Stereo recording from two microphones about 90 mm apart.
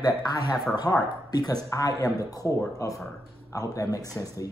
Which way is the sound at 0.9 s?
30° left (ahead or behind).